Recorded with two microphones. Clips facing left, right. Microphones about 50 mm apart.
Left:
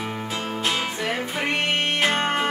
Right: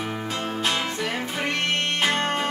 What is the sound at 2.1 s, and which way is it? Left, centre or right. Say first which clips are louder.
Music: left 1 dB; centre.